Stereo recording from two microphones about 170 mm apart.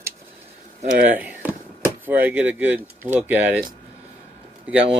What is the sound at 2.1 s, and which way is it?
Speech, 10° right (ahead or behind).